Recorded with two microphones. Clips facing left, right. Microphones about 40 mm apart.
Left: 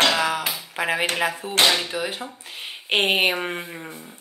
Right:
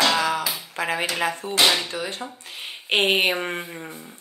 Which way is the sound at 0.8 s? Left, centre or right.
Centre.